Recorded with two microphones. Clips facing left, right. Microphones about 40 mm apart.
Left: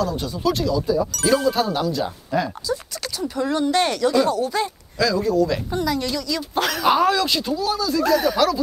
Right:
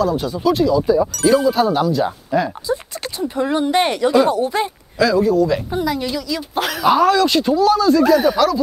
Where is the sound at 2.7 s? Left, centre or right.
Right.